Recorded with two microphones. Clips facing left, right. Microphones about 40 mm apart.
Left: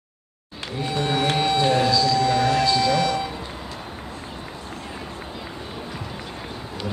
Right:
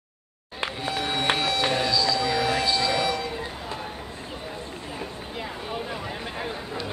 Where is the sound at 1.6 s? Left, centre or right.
Centre.